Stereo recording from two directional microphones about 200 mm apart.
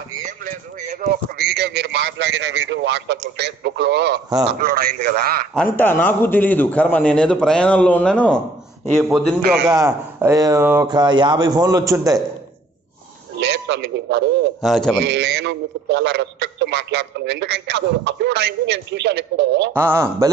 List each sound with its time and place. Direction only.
0.5 s a man's voice: 45° right (ahead or behind)
4.6 s a man's voice: 45° right (ahead or behind)
5.5 s a man's voice: 5° left (ahead or behind)
9.7 s speech: 15° right (ahead or behind)
13.4 s a man's voice: 60° right (ahead or behind)
14.6 s a man's voice: centre (ahead or behind)
15.0 s a man's voice: 60° right (ahead or behind)
19.7 s speech: 10° right (ahead or behind)